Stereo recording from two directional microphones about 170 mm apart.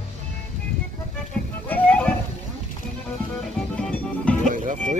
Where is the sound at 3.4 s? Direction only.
5° left (ahead or behind).